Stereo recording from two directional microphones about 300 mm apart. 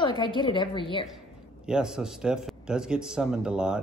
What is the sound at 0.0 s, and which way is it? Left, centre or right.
Speech, centre.